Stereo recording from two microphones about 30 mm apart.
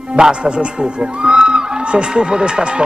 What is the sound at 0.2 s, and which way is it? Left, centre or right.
A man's voice, right.